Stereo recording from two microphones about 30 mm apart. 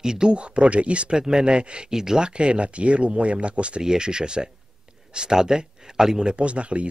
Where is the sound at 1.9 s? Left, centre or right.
Centre; by 3.8 s right.